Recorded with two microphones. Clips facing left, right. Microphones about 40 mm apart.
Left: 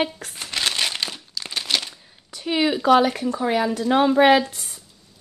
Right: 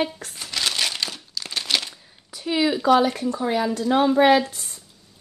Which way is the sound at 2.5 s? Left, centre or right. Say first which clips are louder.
Even; centre.